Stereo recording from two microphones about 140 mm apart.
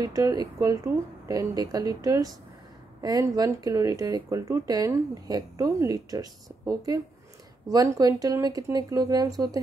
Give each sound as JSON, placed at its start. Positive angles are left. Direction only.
{"t": 0.0, "sound": "speech", "side_deg": -25}